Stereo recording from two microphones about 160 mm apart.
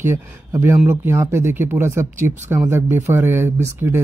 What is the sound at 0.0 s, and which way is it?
Speech, 15° right (ahead or behind).